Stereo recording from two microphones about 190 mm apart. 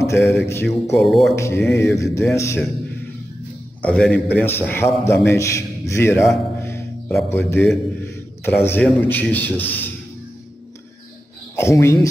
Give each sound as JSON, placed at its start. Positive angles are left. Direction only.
{"t": 0.0, "sound": "a man's voice", "side_deg": 15}
{"t": 0.9, "sound": "a man's voice", "side_deg": 0}
{"t": 1.3, "sound": "a man's voice", "side_deg": 15}
{"t": 3.8, "sound": "a man's voice", "side_deg": 5}
{"t": 6.6, "sound": "music", "side_deg": 15}
{"t": 7.2, "sound": "a man's voice", "side_deg": 10}
{"t": 11.5, "sound": "a man's voice", "side_deg": 15}